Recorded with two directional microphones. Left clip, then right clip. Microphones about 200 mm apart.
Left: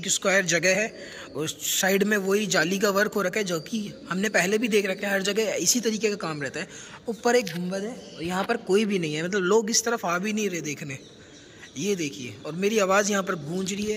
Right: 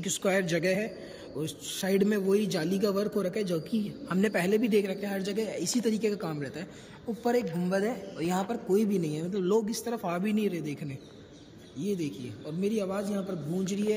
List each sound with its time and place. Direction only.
0.0 s a man's voice: 10° right (ahead or behind)
12.7 s a man's voice: 30° left (ahead or behind)
13.7 s a man's voice: 5° right (ahead or behind)